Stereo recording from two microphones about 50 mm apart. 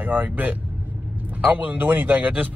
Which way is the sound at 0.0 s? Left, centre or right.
Right.